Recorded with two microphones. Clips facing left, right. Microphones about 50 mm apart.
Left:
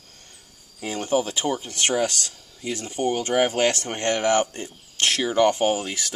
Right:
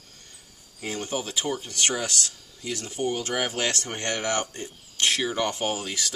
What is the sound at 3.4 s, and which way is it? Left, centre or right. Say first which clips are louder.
Speech: left 7 dB; left.